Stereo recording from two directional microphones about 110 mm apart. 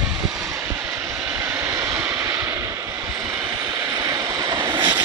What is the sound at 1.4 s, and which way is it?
Vehicle, 25° right (ahead or behind).